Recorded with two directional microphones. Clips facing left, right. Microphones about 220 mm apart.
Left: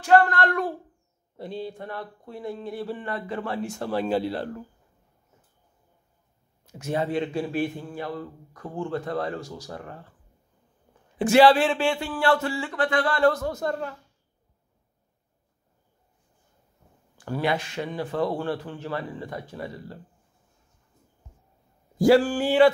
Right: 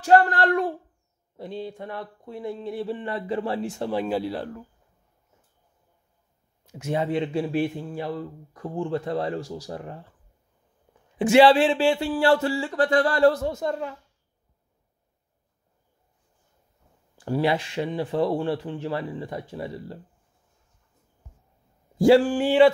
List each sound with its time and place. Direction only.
0.0 s speech: 35° right (ahead or behind)
3.9 s speech: 10° right (ahead or behind)
6.8 s speech: 20° right (ahead or behind)
11.1 s speech: 25° right (ahead or behind)
13.6 s speech: 15° right (ahead or behind)
17.2 s speech: 30° right (ahead or behind)
21.9 s speech: 25° right (ahead or behind)